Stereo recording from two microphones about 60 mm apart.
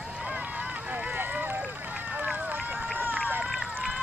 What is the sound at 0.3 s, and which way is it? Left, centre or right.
Run, centre.